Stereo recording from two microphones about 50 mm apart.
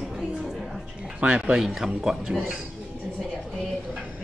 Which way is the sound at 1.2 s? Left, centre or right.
Right.